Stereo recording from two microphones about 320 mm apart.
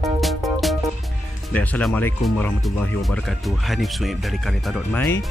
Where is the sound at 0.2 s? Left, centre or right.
Centre.